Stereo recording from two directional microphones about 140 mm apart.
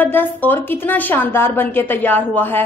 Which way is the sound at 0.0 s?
15° left (ahead or behind).